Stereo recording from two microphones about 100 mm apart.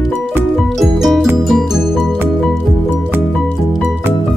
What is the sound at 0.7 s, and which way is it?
Music, centre (ahead or behind).